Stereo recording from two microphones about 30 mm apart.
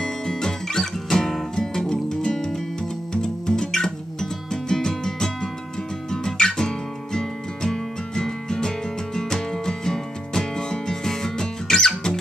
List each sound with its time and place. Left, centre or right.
0.0 s music: left